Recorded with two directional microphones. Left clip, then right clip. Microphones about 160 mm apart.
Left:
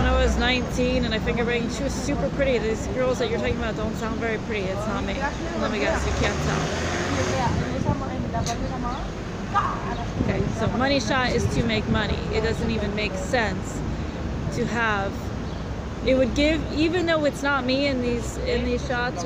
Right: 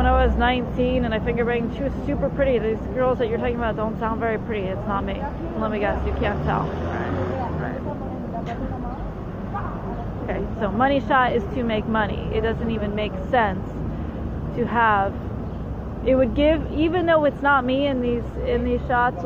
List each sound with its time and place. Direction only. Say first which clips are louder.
0.0 s speech: right 3 dB; 30° left (ahead or behind)
10.6 s speech: right 4 dB; 30° left (ahead or behind)
14.7 s speech: right 6 dB; 30° left (ahead or behind)
16.1 s speech: right 3 dB; 30° left (ahead or behind)